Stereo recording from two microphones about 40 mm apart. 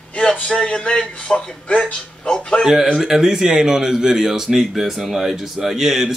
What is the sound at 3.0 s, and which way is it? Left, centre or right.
Speech, centre.